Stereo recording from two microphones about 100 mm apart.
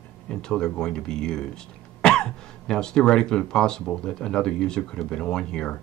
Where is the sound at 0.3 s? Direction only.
10° left (ahead or behind).